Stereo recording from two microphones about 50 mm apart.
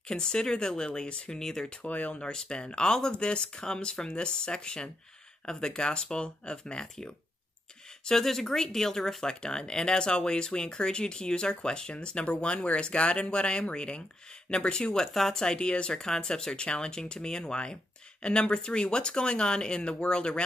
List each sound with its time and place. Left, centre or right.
0.1 s speech: centre
1.4 s speech: centre
1.8 s speech: left
2.2 s speech: centre